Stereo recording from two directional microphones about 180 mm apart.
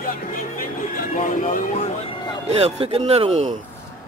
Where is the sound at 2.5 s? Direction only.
35° right (ahead or behind).